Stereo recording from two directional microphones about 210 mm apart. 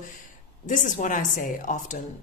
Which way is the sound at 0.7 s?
35° left (ahead or behind).